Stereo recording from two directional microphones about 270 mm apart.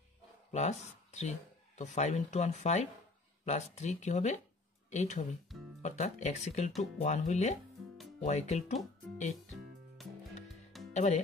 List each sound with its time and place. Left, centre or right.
0.5 s speech: left
10.0 s music: centre
10.9 s music: left